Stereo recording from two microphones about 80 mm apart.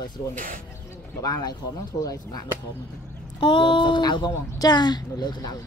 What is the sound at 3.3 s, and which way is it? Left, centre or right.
Speech, left.